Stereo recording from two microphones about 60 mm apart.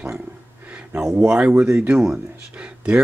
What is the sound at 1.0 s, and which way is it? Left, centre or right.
Speech, centre.